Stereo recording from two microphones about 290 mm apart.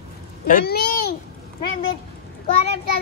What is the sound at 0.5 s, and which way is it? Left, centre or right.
Speech, left.